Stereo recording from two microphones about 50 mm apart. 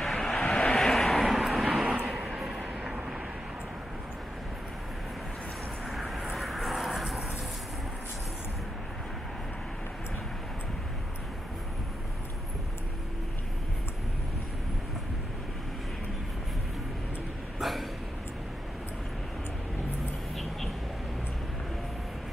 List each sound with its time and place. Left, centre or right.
0.0 s vehicle: centre
0.4 s vehicle: centre
0.7 s vehicle: centre
5.9 s vehicle: centre
17.6 s a sound: centre